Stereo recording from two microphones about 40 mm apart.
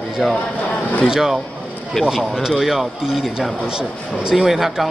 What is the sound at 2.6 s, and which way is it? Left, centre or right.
Speech, centre.